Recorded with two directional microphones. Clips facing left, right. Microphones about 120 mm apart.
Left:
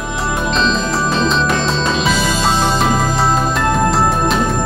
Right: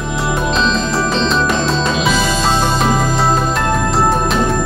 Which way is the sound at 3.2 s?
Centre (ahead or behind).